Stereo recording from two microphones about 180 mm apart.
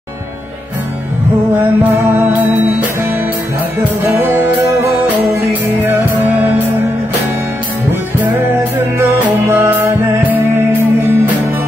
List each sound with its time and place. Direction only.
1.8 s music: 10° right (ahead or behind)
5.9 s music: 10° right (ahead or behind)
8.2 s music: 10° right (ahead or behind)